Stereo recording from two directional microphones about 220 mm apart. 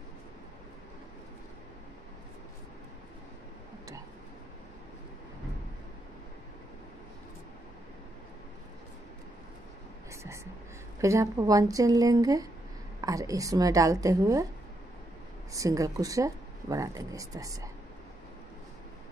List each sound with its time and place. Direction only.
10.2 s speech: 10° right (ahead or behind)
15.5 s speech: 15° right (ahead or behind)